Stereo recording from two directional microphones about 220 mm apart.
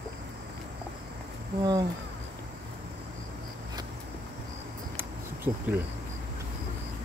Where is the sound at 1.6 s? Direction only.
20° right (ahead or behind).